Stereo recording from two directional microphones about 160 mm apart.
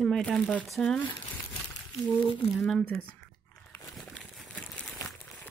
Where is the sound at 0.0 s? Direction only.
Centre (ahead or behind).